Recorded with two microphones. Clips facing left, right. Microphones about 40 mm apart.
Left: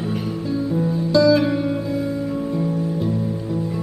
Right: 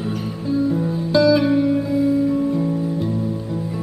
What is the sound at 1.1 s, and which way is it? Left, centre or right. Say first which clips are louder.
Music: right 1 dB; centre.